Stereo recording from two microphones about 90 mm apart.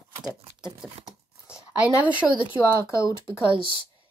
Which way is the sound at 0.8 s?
5° right (ahead or behind).